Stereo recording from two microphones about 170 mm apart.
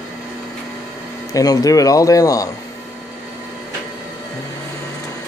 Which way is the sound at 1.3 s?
20° left (ahead or behind).